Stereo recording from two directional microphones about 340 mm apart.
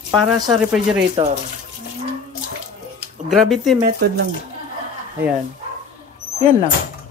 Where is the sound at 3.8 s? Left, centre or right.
Right.